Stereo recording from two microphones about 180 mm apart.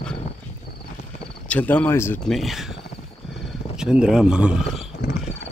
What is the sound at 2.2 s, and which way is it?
Speech, centre (ahead or behind).